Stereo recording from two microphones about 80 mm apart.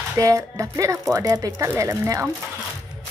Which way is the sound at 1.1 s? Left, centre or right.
Right.